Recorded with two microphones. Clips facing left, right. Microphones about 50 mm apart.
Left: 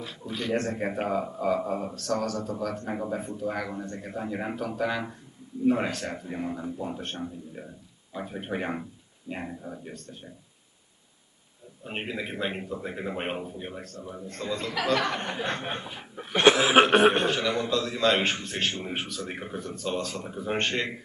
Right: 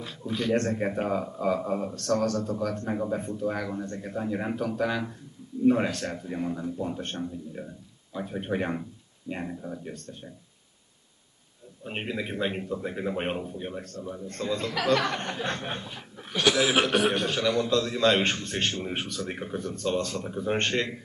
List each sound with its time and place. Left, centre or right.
0.0 s a man's voice: centre
11.8 s a man's voice: centre
16.3 s a man's voice: left
17.3 s a man's voice: centre